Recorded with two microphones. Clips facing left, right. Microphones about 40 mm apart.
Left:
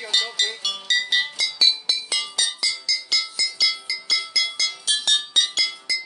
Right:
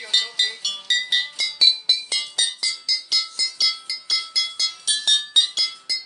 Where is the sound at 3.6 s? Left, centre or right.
Centre.